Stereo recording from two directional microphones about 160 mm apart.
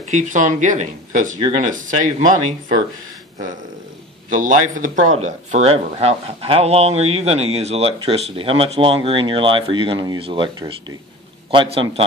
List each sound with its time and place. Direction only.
0.0 s speech: 50° right (ahead or behind)
4.4 s speech: 55° right (ahead or behind); by 12.0 s 35° right (ahead or behind)